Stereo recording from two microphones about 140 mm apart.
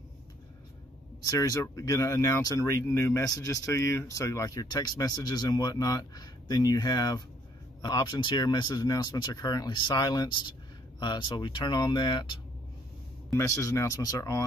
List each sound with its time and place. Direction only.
1.2 s speech: 25° left (ahead or behind)
13.4 s speech: 25° left (ahead or behind)